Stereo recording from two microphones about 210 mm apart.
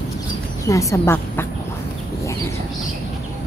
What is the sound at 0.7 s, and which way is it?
Speech, 15° left (ahead or behind).